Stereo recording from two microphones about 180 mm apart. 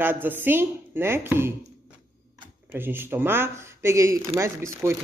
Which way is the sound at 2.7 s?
10° right (ahead or behind).